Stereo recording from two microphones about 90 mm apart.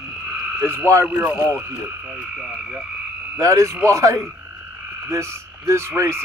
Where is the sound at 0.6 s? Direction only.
30° right (ahead or behind).